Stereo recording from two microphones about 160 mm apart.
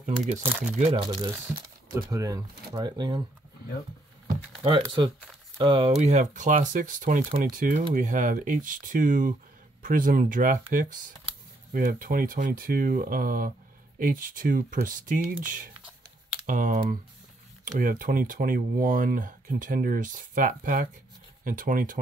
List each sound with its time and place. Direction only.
0.0 s speech: 50° right (ahead or behind)
0.4 s speech: 15° right (ahead or behind)
0.7 s speech: 40° right (ahead or behind)
2.0 s speech: 20° right (ahead or behind)
4.6 s speech: 35° right (ahead or behind); by 21.9 s 55° right (ahead or behind)